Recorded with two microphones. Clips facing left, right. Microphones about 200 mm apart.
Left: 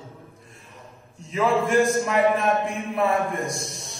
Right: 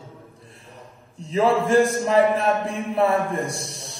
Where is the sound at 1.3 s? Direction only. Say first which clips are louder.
Right 3 dB; 30° right (ahead or behind).